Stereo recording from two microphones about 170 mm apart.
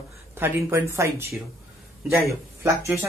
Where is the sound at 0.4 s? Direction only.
15° right (ahead or behind).